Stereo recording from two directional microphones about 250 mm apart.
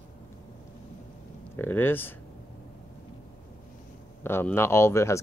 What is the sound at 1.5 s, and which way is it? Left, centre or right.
Speech, centre.